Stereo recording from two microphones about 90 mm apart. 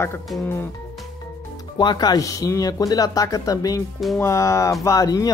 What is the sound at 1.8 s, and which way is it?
Speech, 50° left (ahead or behind).